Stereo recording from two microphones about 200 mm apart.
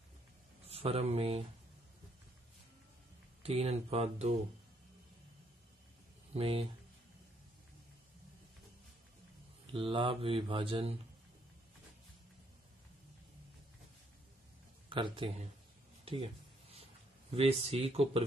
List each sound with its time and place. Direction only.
0.7 s speech: 30° right (ahead or behind)
3.4 s speech: 30° right (ahead or behind)
6.3 s speech: 30° right (ahead or behind)
9.7 s speech: 25° right (ahead or behind)
14.9 s speech: 25° right (ahead or behind)
16.7 s a sound: 30° right (ahead or behind)